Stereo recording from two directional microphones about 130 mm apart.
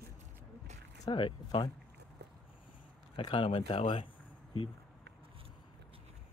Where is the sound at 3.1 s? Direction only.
40° left (ahead or behind).